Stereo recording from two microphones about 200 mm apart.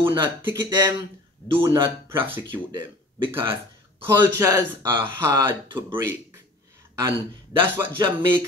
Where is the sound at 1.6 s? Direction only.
15° right (ahead or behind).